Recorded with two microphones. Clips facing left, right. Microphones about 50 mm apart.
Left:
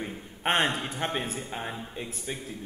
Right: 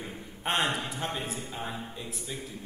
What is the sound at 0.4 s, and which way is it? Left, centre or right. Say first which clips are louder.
A man's voice: left 3 dB; left.